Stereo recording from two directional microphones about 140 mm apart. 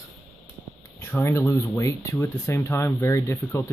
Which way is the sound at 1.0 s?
20° left (ahead or behind).